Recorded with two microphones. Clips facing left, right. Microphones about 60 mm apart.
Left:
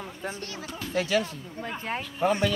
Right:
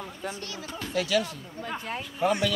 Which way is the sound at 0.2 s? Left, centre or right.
Left.